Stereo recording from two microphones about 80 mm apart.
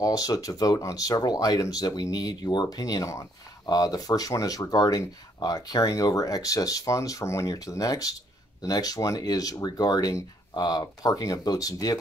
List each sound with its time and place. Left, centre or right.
0.0 s speech: left
3.6 s speech: left
10.8 s speech: left